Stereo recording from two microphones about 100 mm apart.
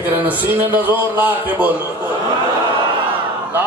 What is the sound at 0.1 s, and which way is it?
A man's voice, 20° right (ahead or behind).